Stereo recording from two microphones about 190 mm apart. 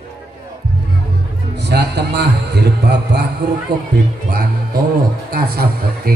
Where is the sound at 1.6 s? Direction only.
60° right (ahead or behind).